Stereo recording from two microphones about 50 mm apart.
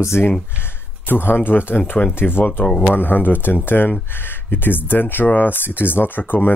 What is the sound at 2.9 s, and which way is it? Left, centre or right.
Speech, left.